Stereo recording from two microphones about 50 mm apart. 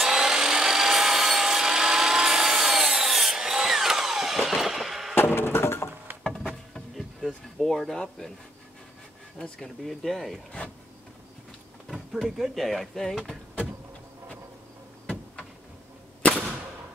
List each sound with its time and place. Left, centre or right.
0.0 s tools: centre
5.1 s a sound: left
7.5 s speech: centre
9.8 s speech: centre
11.9 s speech: centre
16.2 s a sound: left